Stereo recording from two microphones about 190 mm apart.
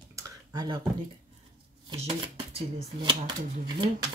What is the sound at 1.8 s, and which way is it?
Speech, 30° right (ahead or behind).